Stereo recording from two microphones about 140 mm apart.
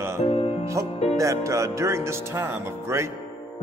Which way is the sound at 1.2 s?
20° right (ahead or behind).